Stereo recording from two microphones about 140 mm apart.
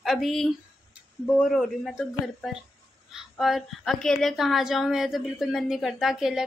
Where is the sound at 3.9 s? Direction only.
Centre (ahead or behind).